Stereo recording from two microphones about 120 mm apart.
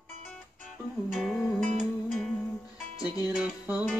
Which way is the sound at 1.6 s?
75° right (ahead or behind).